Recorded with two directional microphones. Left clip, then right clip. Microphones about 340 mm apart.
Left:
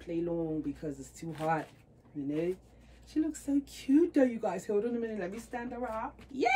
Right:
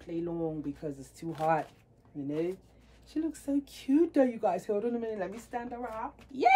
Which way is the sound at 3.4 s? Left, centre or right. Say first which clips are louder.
Even; centre.